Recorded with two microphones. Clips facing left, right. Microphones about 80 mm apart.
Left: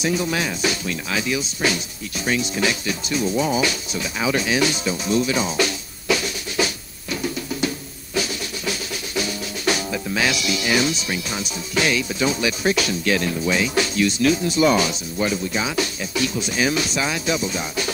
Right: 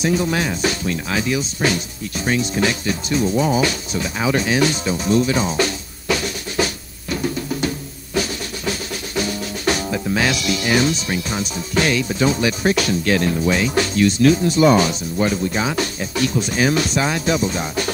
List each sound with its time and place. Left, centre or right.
0.0 s speech: right